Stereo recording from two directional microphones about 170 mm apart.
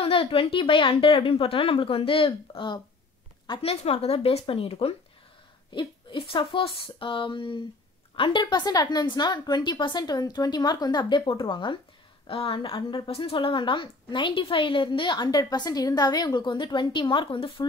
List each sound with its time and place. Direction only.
0.0 s a woman's voice: 35° left (ahead or behind)